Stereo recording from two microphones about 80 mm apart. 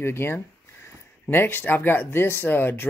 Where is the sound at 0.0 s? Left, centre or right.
Left.